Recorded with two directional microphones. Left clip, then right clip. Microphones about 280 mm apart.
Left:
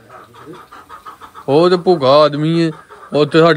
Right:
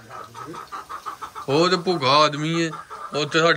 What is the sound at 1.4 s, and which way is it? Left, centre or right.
Speech, centre.